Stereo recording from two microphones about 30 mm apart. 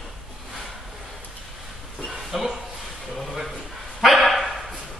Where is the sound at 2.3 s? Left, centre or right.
Centre.